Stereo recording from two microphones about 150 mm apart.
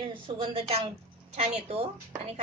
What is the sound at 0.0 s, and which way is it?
A woman's voice, 35° right (ahead or behind).